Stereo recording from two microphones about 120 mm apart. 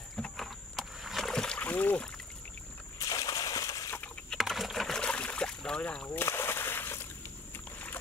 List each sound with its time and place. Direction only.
0.1 s rowboat: 5° left (ahead or behind)
3.0 s a sound: 30° left (ahead or behind)
4.4 s boat: centre (ahead or behind); by 8.0 s 15° left (ahead or behind)